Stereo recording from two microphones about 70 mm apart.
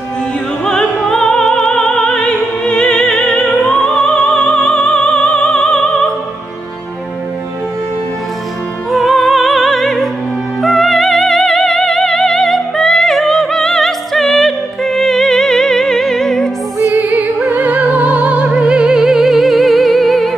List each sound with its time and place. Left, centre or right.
1.1 s opera: centre
8.9 s opera: centre
10.6 s music: centre
16.8 s music: right; by 20.3 s centre